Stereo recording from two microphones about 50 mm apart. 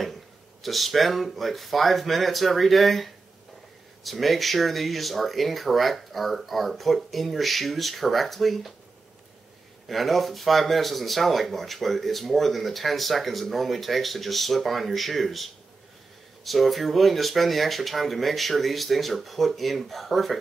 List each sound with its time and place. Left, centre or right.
0.0 s speech: centre
9.8 s speech: centre